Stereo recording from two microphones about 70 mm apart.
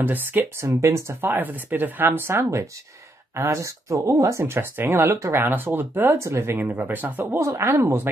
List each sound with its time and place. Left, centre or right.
0.0 s speech: right
0.6 s speech: right
7.3 s speech: right